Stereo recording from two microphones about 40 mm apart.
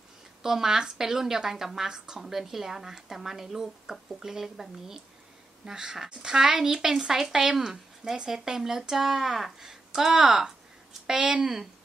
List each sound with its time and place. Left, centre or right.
0.4 s a woman's voice: centre